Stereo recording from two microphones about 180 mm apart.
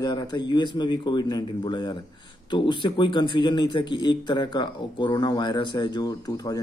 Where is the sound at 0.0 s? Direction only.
25° left (ahead or behind).